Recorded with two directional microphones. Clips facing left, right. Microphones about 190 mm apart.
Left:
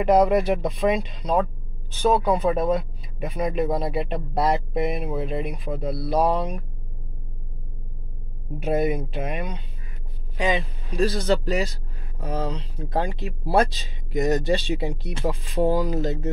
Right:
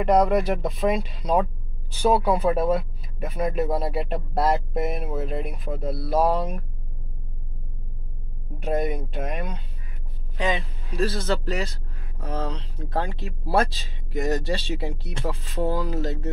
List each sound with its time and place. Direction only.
0.0 s speech: centre (ahead or behind)
8.5 s speech: 5° left (ahead or behind)
10.3 s speech: 15° left (ahead or behind)